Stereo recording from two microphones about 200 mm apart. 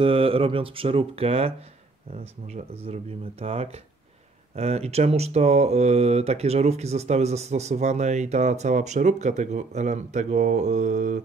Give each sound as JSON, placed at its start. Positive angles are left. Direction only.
{"t": 0.0, "sound": "speech", "side_deg": -25}